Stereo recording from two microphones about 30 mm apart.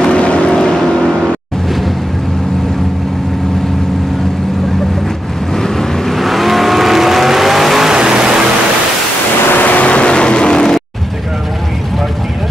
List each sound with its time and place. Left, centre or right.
0.0 s vehicle: left
5.6 s waves: centre
6.1 s vehicle: centre
7.9 s vehicle: right
9.6 s vehicle: left
10.0 s vehicle: left